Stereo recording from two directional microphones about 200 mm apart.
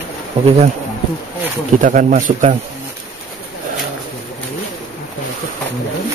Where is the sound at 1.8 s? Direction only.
40° right (ahead or behind).